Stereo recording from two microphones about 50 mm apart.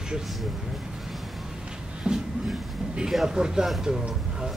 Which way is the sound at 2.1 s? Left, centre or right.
Centre.